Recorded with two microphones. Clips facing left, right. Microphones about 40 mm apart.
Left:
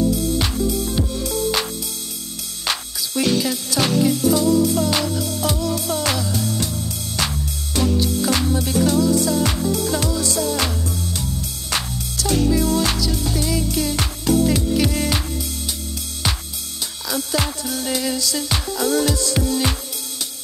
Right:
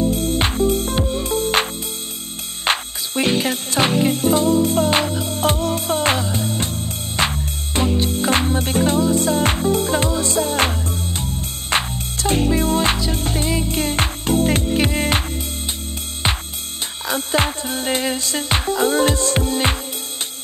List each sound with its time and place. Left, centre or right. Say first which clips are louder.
0.1 s music: right 1 dB; right
17.1 s music: right 3 dB; right